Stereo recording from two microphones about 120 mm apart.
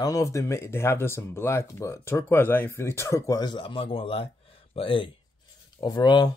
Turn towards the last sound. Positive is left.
turn(degrees=35)  # may be behind; listen again after turning